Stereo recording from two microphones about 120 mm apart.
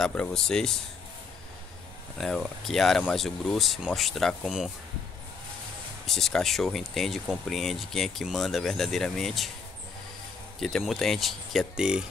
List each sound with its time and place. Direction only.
0.0 s speech: 5° left (ahead or behind)
2.1 s speech: 5° left (ahead or behind)
6.0 s speech: 5° left (ahead or behind)
10.6 s speech: centre (ahead or behind)